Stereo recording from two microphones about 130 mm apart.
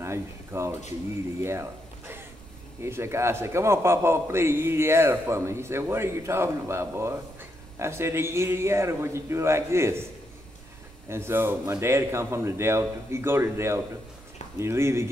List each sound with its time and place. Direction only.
0.0 s speech: 20° right (ahead or behind)
1.4 s a sound: 20° right (ahead or behind)
2.8 s a man's voice: 20° right (ahead or behind)
11.1 s a man's voice: 20° right (ahead or behind)